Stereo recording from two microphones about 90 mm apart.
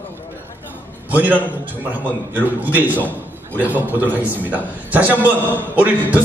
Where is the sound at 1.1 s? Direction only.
15° right (ahead or behind).